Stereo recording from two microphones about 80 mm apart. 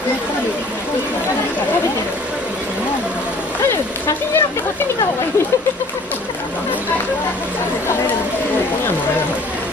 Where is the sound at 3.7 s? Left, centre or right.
Left.